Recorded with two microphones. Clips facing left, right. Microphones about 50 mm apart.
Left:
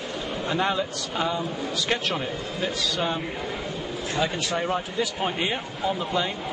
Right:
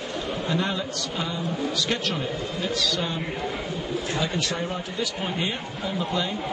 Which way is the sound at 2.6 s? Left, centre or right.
Centre.